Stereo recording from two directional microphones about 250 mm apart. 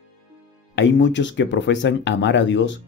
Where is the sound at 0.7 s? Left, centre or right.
Left.